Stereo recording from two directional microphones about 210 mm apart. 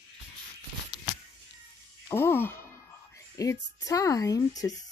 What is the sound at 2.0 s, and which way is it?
A child's voice, 10° left (ahead or behind).